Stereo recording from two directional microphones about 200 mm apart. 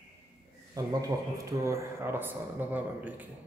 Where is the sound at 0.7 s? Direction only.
15° right (ahead or behind).